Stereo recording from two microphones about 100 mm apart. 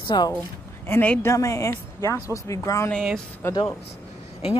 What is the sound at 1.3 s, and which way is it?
Speech, 35° left (ahead or behind).